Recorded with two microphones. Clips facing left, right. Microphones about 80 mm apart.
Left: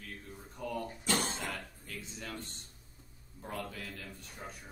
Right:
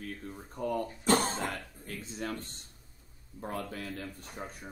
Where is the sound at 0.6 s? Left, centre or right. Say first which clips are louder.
Right 5 dB; right.